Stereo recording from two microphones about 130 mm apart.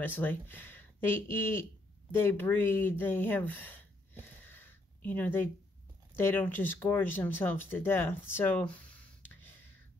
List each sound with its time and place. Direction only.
0.0 s speech: 15° left (ahead or behind)